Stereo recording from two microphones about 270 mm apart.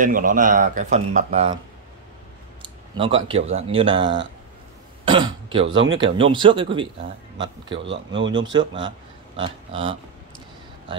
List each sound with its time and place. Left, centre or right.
0.0 s speech: right
2.6 s a sound: centre
3.5 s speech: centre
5.7 s speech: right
6.1 s speech: centre
7.9 s speech: right
8.3 s speech: centre